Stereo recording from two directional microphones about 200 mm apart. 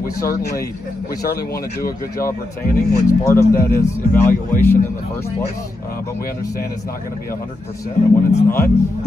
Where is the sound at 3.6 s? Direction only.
15° left (ahead or behind).